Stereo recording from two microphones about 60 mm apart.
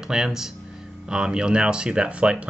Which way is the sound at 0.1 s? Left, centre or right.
Centre.